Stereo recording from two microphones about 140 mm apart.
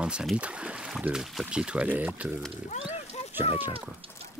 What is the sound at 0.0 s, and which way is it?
Speech, 5° right (ahead or behind).